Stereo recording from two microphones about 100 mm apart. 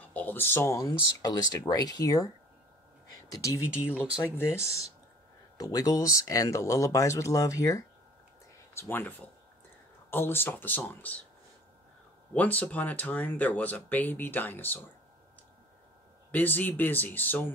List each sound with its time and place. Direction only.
0.0 s speech: 15° left (ahead or behind); by 2.2 s 35° left (ahead or behind)
3.3 s speech: 30° left (ahead or behind)
3.6 s speech: 10° right (ahead or behind)
4.6 s speech: 30° left (ahead or behind)
8.7 s speech: 20° left (ahead or behind)
12.4 s speech: 15° left (ahead or behind)
16.3 s speech: 15° left (ahead or behind)